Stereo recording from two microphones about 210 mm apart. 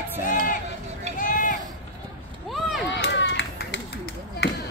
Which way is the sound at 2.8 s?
55° left (ahead or behind).